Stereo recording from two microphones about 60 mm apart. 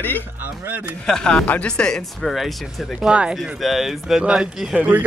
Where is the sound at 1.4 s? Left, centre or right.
Left.